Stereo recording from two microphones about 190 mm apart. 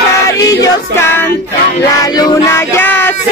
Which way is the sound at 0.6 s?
10° left (ahead or behind).